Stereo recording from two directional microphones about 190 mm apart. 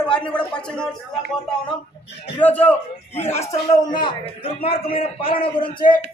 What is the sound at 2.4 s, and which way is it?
A man's voice, 10° left (ahead or behind).